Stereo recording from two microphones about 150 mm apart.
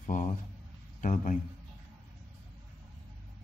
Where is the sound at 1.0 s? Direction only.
55° left (ahead or behind).